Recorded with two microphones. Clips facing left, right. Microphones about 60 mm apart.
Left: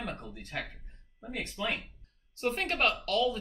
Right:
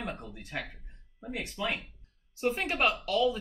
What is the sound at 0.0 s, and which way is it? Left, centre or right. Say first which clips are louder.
Speech: right 1 dB; centre.